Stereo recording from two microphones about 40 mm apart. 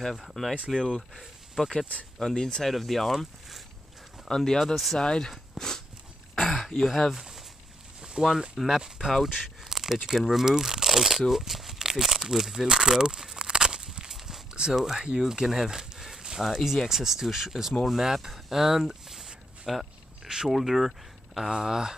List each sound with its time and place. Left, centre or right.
0.2 s speech: centre
2.1 s speech: centre
2.7 s speech: centre
4.3 s speech: centre
5.6 s speech: centre
6.4 s throat clearing: centre
6.8 s speech: centre
12.6 s walk: centre
14.1 s a sound: centre
14.7 s speech: centre
21.5 s speech: centre